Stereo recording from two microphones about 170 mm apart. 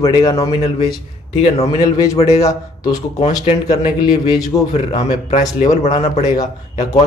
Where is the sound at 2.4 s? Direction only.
20° left (ahead or behind).